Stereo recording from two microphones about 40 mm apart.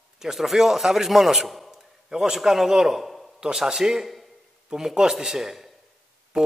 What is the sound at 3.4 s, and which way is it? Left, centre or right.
A man's voice, centre.